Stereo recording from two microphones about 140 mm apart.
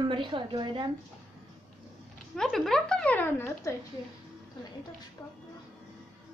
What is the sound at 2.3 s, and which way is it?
Speech, 5° left (ahead or behind).